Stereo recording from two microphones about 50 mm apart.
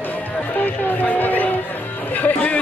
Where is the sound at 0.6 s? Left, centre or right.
Left.